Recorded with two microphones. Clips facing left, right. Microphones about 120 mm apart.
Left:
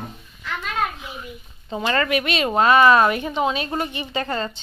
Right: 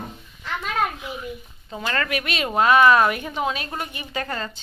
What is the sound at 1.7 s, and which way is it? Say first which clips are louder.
Speech: left 5 dB; 10° left (ahead or behind).